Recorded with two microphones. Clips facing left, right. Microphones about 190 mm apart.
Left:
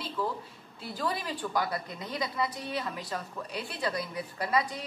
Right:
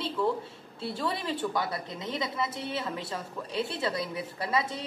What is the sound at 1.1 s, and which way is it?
A woman's voice, 25° right (ahead or behind).